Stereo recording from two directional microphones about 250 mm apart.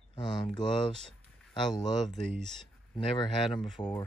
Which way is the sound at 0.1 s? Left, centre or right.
Centre.